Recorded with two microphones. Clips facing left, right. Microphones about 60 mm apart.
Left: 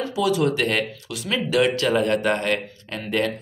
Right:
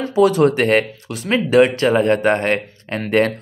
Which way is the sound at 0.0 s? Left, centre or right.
Right.